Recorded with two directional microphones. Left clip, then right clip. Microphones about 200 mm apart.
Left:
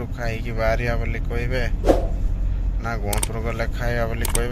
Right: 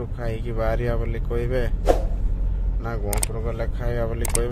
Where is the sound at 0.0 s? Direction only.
15° right (ahead or behind).